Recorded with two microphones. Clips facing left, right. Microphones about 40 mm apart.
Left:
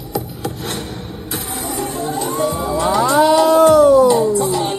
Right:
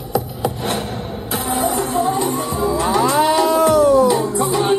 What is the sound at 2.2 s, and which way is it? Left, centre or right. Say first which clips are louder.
Music: even; centre.